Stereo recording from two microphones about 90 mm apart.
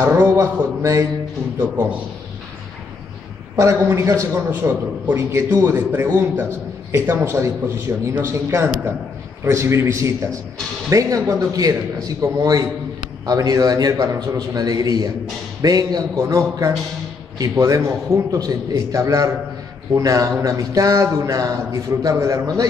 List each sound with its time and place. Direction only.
0.2 s a man's voice: 25° right (ahead or behind)
3.5 s speech: 35° right (ahead or behind)
4.5 s a man's voice: 20° right (ahead or behind); by 22.7 s 35° right (ahead or behind)